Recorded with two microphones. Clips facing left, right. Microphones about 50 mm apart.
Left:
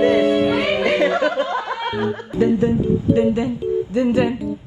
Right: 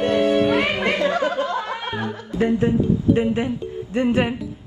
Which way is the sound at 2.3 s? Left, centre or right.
Right.